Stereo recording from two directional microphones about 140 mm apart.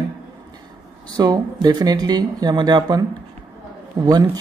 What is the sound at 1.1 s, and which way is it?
Speech, 30° right (ahead or behind).